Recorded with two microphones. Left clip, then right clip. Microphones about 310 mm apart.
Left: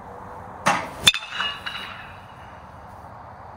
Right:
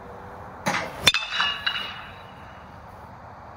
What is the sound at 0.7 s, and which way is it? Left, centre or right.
Hammer, centre.